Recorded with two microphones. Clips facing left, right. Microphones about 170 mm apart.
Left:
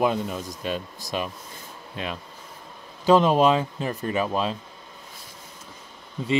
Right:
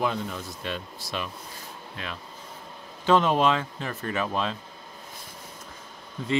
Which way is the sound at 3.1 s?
10° left (ahead or behind).